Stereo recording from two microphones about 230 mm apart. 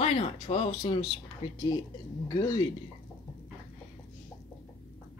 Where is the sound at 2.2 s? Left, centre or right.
Centre.